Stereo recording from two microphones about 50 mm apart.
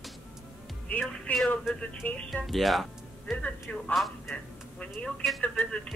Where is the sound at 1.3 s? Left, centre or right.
Left.